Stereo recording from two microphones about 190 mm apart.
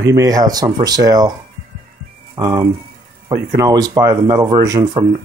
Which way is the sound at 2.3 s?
20° right (ahead or behind).